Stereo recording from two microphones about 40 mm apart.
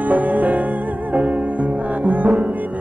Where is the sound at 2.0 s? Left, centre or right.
Right.